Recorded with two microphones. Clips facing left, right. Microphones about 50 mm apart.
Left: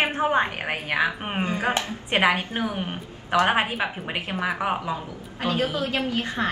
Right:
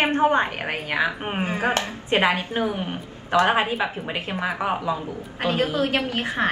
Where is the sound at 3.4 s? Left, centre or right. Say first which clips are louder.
Right 1 dB; left.